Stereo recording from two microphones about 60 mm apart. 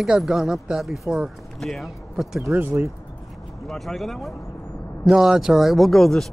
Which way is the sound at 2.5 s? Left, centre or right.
Right.